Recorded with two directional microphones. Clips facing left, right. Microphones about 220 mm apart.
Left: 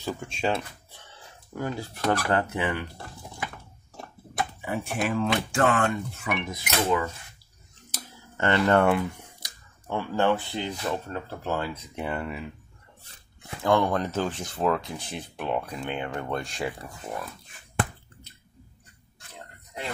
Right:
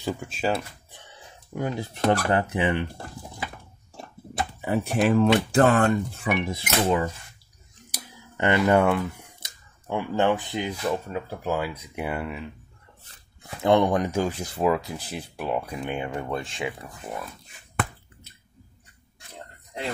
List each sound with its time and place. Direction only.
0.2 s speech: 5° right (ahead or behind)
0.9 s speech: 15° right (ahead or behind)
4.4 s speech: 35° right (ahead or behind)
7.9 s cutlery: 15° right (ahead or behind)
9.4 s speech: 15° right (ahead or behind)
13.6 s speech: 20° right (ahead or behind); by 16.6 s centre (ahead or behind)